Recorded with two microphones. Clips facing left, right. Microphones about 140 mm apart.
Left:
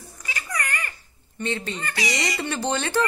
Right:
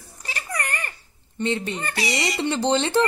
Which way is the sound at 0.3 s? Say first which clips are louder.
Right 1 dB; 25° right (ahead or behind).